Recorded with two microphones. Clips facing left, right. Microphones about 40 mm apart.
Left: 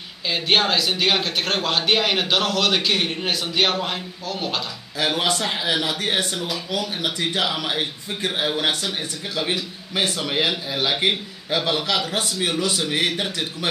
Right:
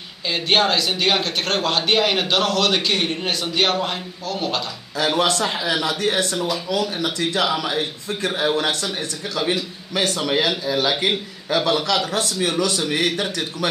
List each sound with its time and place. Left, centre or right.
0.3 s a man's voice: centre
6.3 s a man's voice: centre
9.9 s a man's voice: centre